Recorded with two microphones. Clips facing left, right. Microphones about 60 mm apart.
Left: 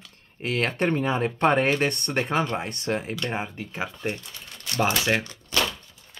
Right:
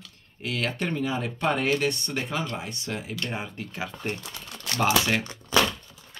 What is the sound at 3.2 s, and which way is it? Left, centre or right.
Speech, left.